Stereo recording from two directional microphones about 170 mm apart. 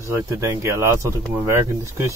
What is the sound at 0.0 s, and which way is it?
Speech, 20° right (ahead or behind).